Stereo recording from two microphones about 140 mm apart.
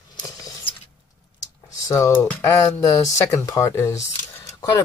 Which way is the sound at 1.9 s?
20° left (ahead or behind).